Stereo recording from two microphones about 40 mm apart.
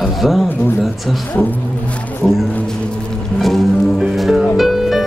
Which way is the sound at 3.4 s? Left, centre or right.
Centre.